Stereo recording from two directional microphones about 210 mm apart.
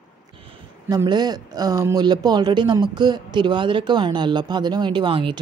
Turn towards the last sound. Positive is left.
turn(degrees=-25)  # may be behind; listen again after turning